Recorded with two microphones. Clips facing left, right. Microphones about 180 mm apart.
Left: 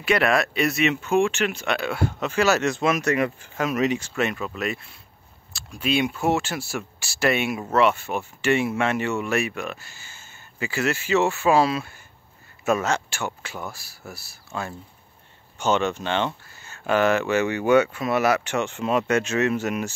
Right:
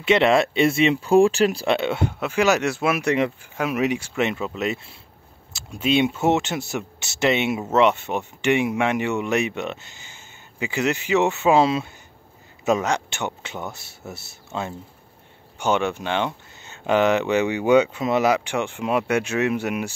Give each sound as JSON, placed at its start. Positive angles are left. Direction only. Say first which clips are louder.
{"t": 0.0, "sound": "speech", "louder": "right 4 dB", "side_deg": -25}
{"t": 2.1, "sound": "speech", "louder": "right 1 dB", "side_deg": -10}
{"t": 4.3, "sound": "speech", "louder": "right 3 dB", "side_deg": -20}
{"t": 15.6, "sound": "speech", "louder": "even", "side_deg": -10}